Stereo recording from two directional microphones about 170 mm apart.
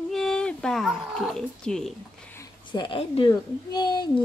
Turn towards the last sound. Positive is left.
turn(degrees=25)  # may be behind; listen again after turning